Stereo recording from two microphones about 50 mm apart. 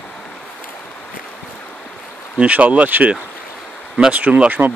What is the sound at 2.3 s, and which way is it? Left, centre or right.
Speech, right.